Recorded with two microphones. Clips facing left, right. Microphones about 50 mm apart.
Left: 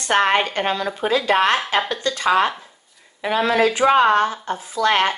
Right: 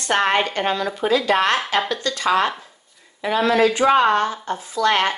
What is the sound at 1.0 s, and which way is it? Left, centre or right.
Speech, left.